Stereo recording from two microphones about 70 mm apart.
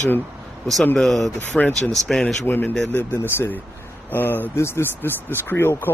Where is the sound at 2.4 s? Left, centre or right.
Left.